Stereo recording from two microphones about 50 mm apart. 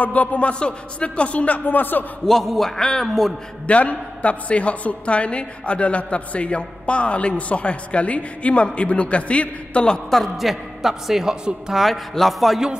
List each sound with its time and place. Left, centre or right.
0.0 s a woman's voice: left
2.2 s a man's voice: centre
3.6 s a woman's voice: left
10.0 s a man's voice: centre
11.8 s a man's voice: centre